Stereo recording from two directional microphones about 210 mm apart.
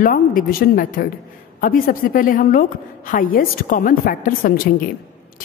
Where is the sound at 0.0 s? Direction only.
40° left (ahead or behind).